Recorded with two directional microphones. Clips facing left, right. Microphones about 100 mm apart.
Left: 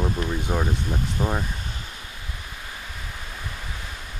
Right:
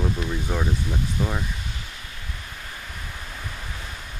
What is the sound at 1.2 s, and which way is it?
Speech, 30° left (ahead or behind).